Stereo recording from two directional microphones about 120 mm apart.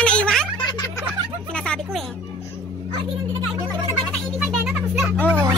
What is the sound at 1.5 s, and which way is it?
Music, 5° left (ahead or behind).